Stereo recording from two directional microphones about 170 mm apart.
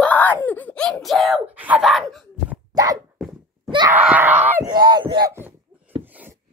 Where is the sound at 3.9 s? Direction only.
10° right (ahead or behind).